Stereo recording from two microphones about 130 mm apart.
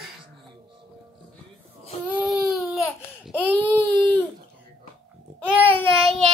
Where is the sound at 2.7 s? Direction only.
Centre (ahead or behind).